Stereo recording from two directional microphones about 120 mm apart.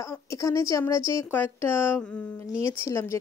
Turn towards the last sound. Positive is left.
turn(degrees=25)  # may be behind; listen again after turning